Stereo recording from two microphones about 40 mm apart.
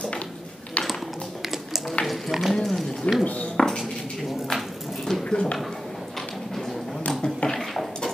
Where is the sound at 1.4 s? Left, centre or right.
Centre.